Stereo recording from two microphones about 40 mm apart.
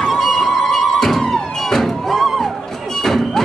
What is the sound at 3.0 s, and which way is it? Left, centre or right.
Music, centre.